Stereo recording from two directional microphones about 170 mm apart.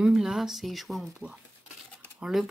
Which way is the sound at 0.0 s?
5° right (ahead or behind).